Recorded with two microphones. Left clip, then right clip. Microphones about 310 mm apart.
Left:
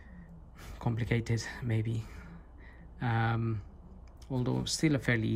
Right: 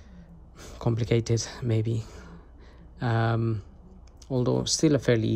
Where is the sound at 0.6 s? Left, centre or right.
Centre.